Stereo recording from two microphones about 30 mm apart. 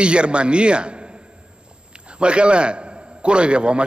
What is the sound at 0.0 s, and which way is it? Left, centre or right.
A man's voice, right.